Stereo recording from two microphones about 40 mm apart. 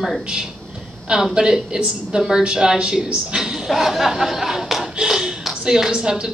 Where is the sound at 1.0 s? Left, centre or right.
Right.